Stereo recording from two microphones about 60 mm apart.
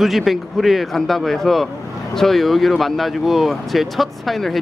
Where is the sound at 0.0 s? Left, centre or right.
Centre.